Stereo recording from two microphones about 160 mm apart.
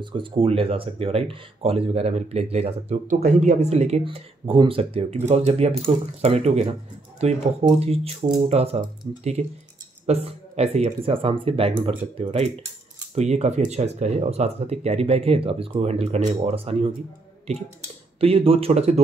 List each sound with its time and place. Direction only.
0.0 s speech: 30° right (ahead or behind)
18.2 s speech: 35° right (ahead or behind)